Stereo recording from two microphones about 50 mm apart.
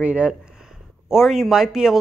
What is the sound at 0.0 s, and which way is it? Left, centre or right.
Speech, right.